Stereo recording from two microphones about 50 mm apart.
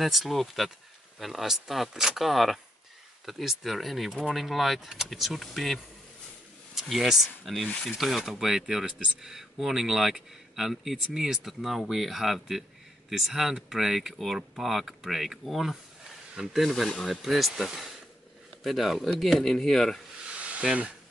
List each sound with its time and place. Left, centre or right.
0.0 s speech: centre
20.2 s hiss: right